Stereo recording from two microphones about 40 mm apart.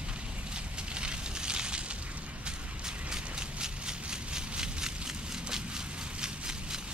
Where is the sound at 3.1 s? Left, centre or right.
Centre.